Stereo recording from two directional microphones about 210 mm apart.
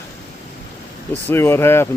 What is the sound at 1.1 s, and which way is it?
Speech, 10° left (ahead or behind).